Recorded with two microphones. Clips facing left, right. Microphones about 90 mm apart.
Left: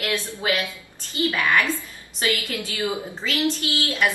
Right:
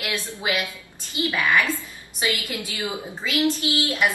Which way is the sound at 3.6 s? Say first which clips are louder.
Right 1 dB; 15° right (ahead or behind).